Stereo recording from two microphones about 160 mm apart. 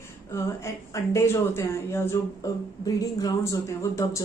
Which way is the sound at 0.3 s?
15° left (ahead or behind).